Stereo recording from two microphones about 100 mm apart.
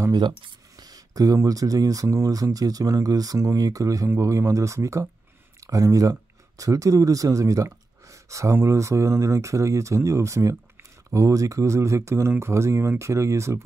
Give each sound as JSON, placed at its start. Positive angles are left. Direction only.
{"t": 0.1, "sound": "speech", "side_deg": -50}